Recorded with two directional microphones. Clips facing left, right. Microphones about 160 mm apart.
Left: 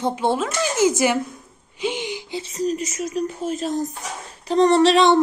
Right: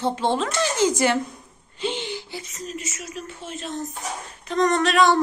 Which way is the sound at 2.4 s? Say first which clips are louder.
Left 10 dB; 35° left (ahead or behind).